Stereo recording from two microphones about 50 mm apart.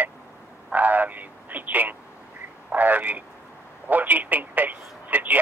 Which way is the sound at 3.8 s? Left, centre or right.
Right.